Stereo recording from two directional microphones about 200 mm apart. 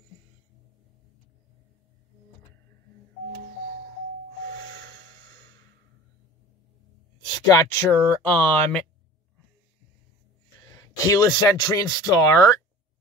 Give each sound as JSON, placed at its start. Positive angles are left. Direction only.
{"t": 7.4, "sound": "speech", "side_deg": 15}
{"t": 10.7, "sound": "speech", "side_deg": 20}